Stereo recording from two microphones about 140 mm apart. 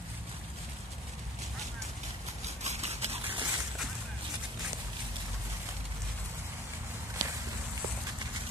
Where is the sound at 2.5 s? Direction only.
50° right (ahead or behind).